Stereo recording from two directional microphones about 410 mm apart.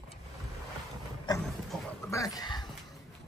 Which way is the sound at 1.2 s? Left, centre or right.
Centre.